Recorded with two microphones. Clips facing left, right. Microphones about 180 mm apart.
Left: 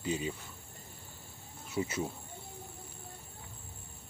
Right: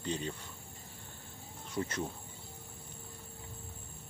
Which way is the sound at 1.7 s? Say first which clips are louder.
Left 2 dB; 5° left (ahead or behind).